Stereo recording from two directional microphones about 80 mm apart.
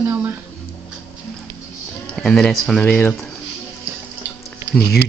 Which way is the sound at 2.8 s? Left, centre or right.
Centre.